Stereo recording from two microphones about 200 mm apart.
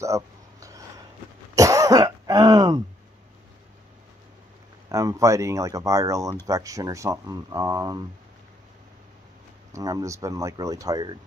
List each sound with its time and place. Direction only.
0.0 s a sound: 15° right (ahead or behind)
1.5 s cough: 15° right (ahead or behind)
4.8 s speech: 15° right (ahead or behind)
9.7 s speech: 15° right (ahead or behind)